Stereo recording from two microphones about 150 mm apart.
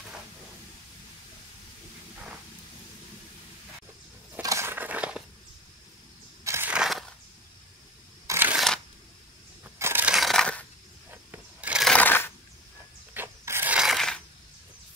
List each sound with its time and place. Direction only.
4.4 s a sound: 20° right (ahead or behind)
6.4 s crushing: 15° right (ahead or behind)
6.7 s crushing: centre (ahead or behind)
8.3 s a sound: 15° right (ahead or behind)
8.5 s shuffling cards: 5° left (ahead or behind)
9.8 s crushing: 15° right (ahead or behind)
10.1 s crushing: centre (ahead or behind)
11.1 s sewing machine: 10° right (ahead or behind)
11.9 s coin: 10° left (ahead or behind)
13.1 s a sound: 15° right (ahead or behind); by 14.2 s centre (ahead or behind)